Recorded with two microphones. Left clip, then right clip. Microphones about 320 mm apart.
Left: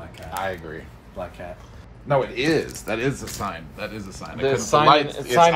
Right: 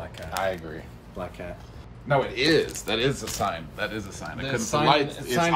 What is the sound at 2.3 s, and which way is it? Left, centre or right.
A man's voice, centre.